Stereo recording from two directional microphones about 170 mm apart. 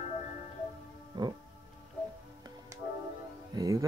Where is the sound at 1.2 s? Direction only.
25° right (ahead or behind).